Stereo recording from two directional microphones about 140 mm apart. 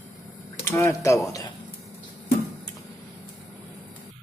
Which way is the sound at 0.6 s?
20° left (ahead or behind).